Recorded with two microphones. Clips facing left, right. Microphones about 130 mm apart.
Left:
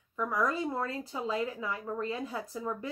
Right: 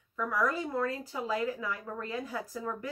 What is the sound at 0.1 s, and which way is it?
Speech, 20° left (ahead or behind).